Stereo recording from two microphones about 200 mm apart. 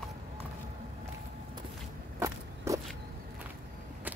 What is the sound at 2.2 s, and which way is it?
Walk, 15° right (ahead or behind).